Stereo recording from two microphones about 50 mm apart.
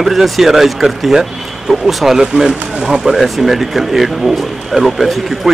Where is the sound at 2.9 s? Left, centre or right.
Centre.